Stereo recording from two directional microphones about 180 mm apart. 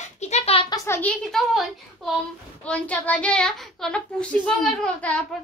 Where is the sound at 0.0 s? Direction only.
40° left (ahead or behind).